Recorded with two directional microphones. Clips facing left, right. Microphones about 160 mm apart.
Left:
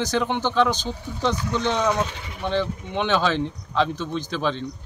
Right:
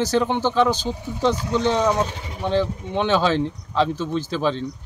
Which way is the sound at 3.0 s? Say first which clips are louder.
Right 2 dB; 10° right (ahead or behind).